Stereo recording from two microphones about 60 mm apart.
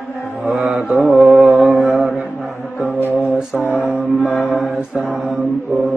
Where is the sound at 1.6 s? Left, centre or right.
Right.